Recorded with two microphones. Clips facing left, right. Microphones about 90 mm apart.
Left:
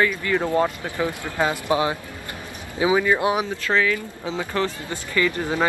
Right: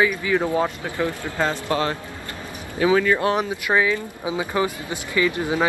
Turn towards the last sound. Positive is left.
turn(degrees=-10)  # may be behind; listen again after turning